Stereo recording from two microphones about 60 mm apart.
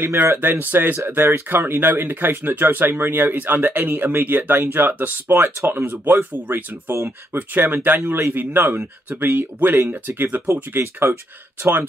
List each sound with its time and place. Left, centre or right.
0.1 s speech: right
0.4 s speech: right